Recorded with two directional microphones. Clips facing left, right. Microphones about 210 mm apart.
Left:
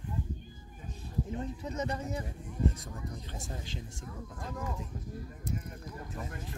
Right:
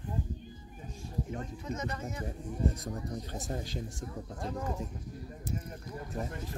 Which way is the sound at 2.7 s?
45° right (ahead or behind).